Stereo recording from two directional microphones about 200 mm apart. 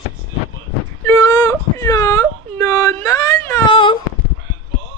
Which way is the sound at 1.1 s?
15° left (ahead or behind).